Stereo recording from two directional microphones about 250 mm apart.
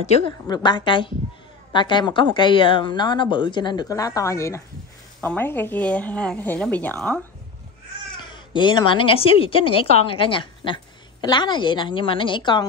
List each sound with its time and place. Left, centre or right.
0.2 s speech: centre
8.2 s speech: centre